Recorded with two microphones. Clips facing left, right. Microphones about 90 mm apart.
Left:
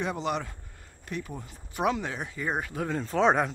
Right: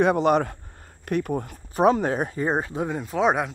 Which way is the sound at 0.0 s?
55° right (ahead or behind).